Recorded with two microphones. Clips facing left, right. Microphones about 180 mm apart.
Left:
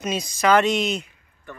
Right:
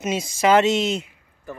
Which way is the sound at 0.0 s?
25° right (ahead or behind).